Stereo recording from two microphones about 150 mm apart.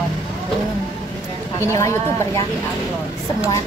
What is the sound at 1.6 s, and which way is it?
Speech, 20° left (ahead or behind).